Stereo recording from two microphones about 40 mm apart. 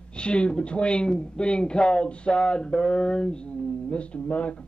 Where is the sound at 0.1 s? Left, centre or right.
Left.